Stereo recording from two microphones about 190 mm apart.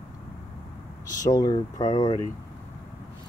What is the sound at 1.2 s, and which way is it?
Speech, 20° left (ahead or behind).